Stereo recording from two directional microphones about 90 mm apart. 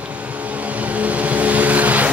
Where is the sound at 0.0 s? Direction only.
15° right (ahead or behind).